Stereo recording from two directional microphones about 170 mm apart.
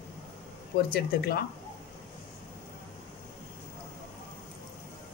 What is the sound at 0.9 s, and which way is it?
Speech, 65° left (ahead or behind).